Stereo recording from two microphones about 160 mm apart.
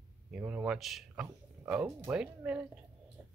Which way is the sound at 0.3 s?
5° right (ahead or behind).